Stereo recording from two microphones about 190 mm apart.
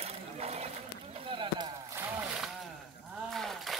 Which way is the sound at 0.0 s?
35° right (ahead or behind).